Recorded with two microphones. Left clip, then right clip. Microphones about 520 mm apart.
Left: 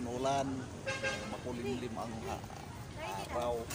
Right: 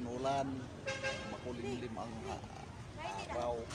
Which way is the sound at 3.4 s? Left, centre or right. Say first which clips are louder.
Left 3 dB; right.